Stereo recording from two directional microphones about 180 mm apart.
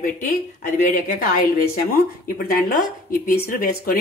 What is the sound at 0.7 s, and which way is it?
Speech, 45° left (ahead or behind).